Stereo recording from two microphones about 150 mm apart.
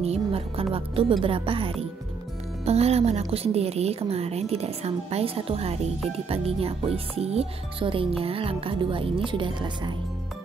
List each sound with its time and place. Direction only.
0.0 s a woman's voice: 45° right (ahead or behind)